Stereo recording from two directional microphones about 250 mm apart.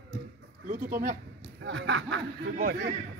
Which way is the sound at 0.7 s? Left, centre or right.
Right.